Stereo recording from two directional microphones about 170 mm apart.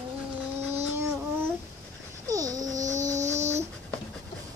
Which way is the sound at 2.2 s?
20° right (ahead or behind).